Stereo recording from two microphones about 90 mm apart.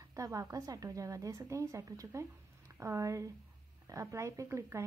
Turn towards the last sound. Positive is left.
turn(degrees=-30)  # may be behind; listen again after turning